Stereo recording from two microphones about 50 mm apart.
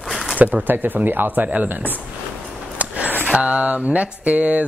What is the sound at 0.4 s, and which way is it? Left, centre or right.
A woman's voice, right.